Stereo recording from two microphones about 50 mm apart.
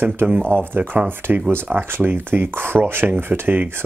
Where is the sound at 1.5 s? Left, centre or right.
Right.